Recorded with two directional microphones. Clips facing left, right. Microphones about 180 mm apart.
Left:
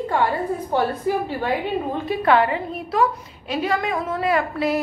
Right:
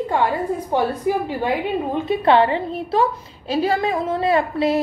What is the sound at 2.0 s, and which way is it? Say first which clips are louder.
A woman's voice: right 3 dB; 25° right (ahead or behind).